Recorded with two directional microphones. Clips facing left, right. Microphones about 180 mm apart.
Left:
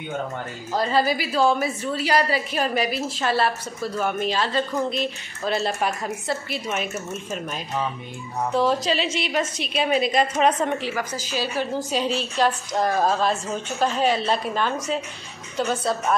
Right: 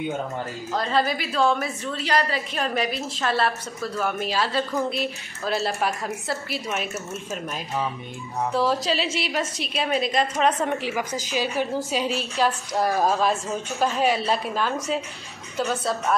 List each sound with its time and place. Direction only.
0.7 s a woman's voice: 5° left (ahead or behind)
8.5 s a woman's voice: centre (ahead or behind)
10.8 s a woman's voice: 15° right (ahead or behind)
11.9 s a woman's voice: 5° right (ahead or behind)